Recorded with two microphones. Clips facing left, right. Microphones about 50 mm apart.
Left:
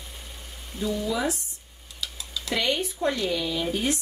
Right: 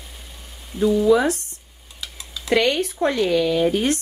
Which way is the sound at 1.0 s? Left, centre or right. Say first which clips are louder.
Right 12 dB; right.